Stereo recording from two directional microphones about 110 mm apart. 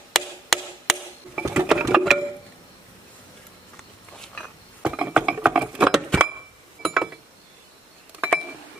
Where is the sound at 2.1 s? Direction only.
Centre (ahead or behind).